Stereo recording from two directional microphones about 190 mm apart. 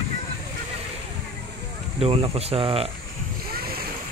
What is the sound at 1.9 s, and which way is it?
Speech, 30° right (ahead or behind).